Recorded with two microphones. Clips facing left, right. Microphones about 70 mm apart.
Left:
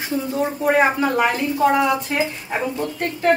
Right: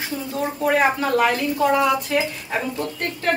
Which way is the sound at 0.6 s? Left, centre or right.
Centre.